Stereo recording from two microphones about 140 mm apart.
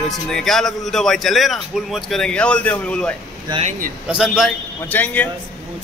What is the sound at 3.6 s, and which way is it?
Speech, 70° right (ahead or behind).